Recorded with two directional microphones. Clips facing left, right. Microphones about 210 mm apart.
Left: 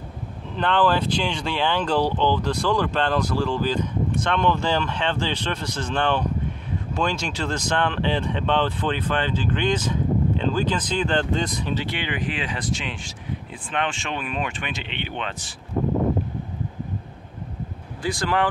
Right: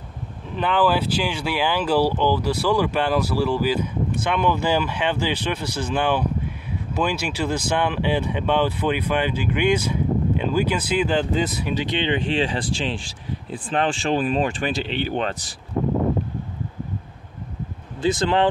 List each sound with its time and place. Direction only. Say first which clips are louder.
0.6 s speech: right 1 dB; 5° right (ahead or behind); by 15.5 s 40° right (ahead or behind)
18.0 s speech: right 4 dB; 25° right (ahead or behind)